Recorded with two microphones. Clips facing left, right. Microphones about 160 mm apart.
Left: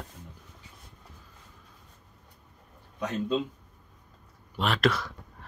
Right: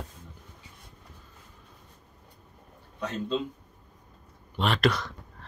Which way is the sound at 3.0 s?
15° left (ahead or behind).